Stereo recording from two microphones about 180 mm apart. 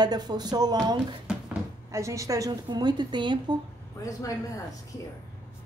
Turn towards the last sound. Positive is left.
turn(degrees=20)  # may be behind; listen again after turning